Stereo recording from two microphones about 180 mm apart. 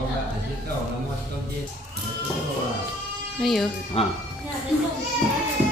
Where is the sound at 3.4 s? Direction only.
Centre (ahead or behind).